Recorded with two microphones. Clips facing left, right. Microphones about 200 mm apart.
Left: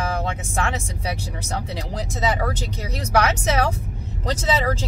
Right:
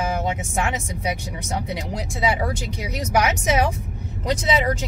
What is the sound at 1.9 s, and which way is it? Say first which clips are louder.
Speech: even; 10° right (ahead or behind).